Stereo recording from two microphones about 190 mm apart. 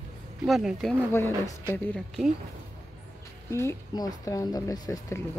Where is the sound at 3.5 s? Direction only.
15° left (ahead or behind).